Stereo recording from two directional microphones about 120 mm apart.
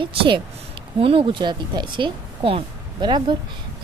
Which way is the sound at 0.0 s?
45° right (ahead or behind).